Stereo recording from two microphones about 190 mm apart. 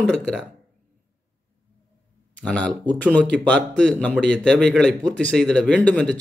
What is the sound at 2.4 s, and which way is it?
A man's voice, 5° left (ahead or behind).